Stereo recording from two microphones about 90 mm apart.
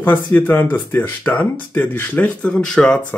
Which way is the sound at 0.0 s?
20° left (ahead or behind).